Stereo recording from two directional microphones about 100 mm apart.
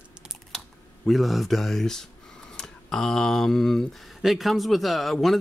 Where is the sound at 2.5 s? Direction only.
5° left (ahead or behind).